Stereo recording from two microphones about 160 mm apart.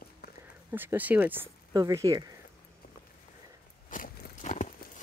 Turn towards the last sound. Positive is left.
turn(degrees=50)  # may be behind; listen again after turning